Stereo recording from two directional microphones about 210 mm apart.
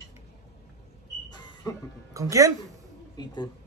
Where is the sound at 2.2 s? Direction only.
15° right (ahead or behind).